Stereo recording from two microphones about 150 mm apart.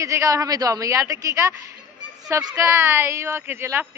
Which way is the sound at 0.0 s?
20° right (ahead or behind).